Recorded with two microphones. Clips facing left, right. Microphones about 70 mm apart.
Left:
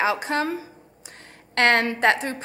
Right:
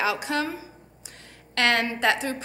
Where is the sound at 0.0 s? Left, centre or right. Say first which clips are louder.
Left 3 dB; left.